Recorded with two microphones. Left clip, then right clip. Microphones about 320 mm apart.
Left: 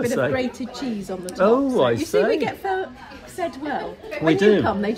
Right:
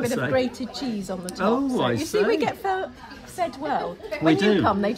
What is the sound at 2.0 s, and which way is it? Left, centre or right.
Speech, centre.